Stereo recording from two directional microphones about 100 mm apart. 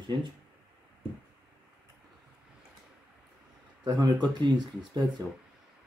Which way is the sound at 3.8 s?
45° right (ahead or behind).